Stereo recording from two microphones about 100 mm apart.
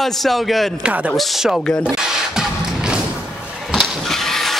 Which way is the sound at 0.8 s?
15° right (ahead or behind).